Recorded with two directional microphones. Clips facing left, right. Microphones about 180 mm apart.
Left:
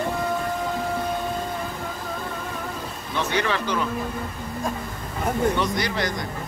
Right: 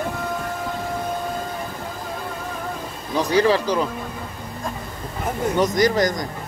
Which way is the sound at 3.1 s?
35° right (ahead or behind).